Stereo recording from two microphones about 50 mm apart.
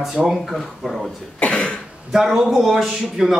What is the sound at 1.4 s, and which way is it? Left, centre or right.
Cough, left.